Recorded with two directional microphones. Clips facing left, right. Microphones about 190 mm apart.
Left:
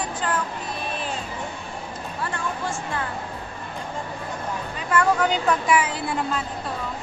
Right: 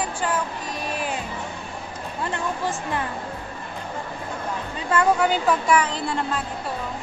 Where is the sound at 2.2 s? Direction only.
20° right (ahead or behind).